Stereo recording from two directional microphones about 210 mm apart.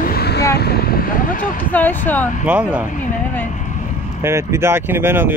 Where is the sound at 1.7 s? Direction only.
10° left (ahead or behind).